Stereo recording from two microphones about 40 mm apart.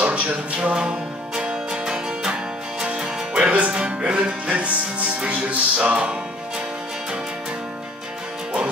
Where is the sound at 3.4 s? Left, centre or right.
Right.